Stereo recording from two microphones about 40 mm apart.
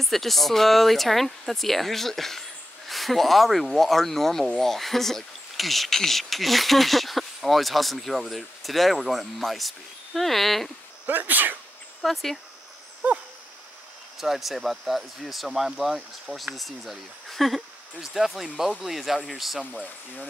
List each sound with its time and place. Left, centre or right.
0.0 s speech: centre
11.1 s speech: right
12.0 s speech: centre
13.0 s dog: right
14.1 s speech: centre